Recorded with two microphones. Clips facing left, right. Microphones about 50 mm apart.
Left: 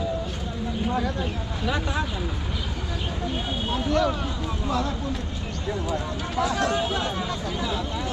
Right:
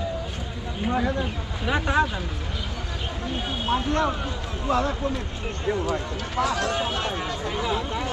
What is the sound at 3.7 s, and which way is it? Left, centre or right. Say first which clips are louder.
Speech: even; right.